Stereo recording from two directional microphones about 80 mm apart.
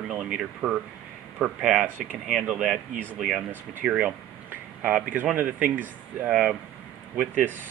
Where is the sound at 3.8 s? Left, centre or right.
Centre.